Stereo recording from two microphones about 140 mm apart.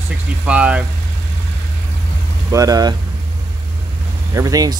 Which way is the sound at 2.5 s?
25° right (ahead or behind).